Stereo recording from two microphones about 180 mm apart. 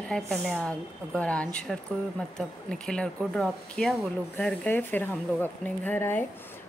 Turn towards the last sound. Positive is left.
turn(degrees=10)  # may be behind; listen again after turning